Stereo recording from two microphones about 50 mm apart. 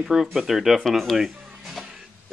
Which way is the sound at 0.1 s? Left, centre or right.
Centre.